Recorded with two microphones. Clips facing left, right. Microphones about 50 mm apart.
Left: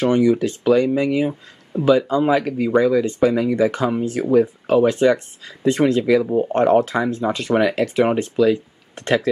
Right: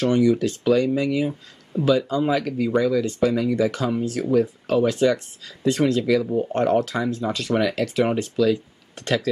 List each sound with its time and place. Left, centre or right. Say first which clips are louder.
0.0 s speech: left 2 dB; left
6.0 s speech: left 4 dB; centre